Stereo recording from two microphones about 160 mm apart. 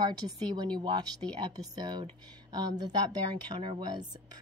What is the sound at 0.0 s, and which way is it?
Speech, 25° right (ahead or behind).